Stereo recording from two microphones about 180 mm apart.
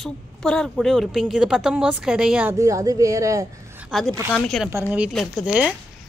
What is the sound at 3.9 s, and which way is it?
Speech, centre (ahead or behind).